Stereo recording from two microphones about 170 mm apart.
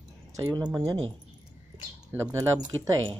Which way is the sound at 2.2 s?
20° right (ahead or behind).